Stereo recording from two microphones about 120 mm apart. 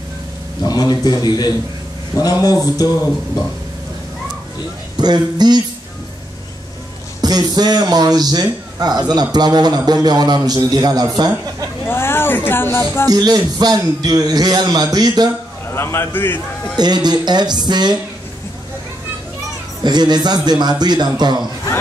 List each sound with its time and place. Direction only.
0.6 s a man's voice: 35° left (ahead or behind)
4.9 s a man's voice: 35° right (ahead or behind)
7.2 s a man's voice: 35° right (ahead or behind)
11.9 s speech: 20° left (ahead or behind)
13.1 s a man's voice: 35° right (ahead or behind)
15.7 s a man's voice: 20° left (ahead or behind)
16.7 s a man's voice: 35° right (ahead or behind)
19.8 s a man's voice: 35° right (ahead or behind)